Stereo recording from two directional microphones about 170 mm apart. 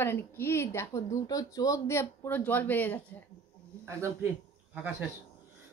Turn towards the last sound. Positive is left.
turn(degrees=-10)  # may be behind; listen again after turning